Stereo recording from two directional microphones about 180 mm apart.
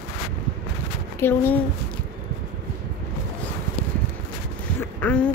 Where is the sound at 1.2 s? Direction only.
10° left (ahead or behind).